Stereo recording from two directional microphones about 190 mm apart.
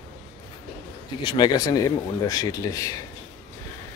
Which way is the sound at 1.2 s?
25° left (ahead or behind).